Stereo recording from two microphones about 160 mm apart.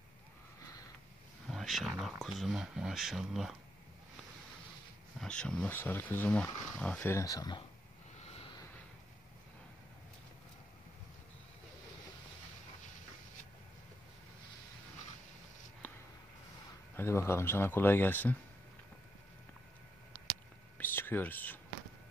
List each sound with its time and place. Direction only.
1.5 s speech: centre (ahead or behind)
5.2 s speech: 5° left (ahead or behind); by 7.6 s 25° left (ahead or behind)
8.2 s vehicle: 40° left (ahead or behind)
15.8 s a sound: 10° left (ahead or behind)
16.9 s speech: 15° left (ahead or behind)
20.7 s whispering: 15° left (ahead or behind)